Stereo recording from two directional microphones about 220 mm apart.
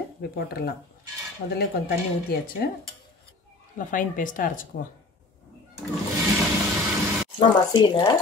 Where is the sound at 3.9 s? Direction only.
35° left (ahead or behind).